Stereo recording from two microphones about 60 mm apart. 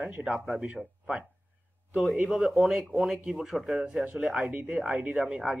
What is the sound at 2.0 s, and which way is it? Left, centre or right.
Speech, centre.